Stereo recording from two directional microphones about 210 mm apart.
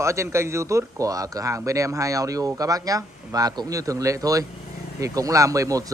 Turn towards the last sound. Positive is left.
turn(degrees=-15)  # may be behind; listen again after turning